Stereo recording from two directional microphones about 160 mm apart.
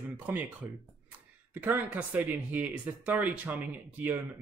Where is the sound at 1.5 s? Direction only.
10° right (ahead or behind).